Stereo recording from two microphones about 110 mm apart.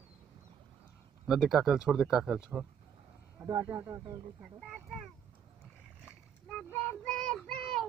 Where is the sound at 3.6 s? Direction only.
20° right (ahead or behind).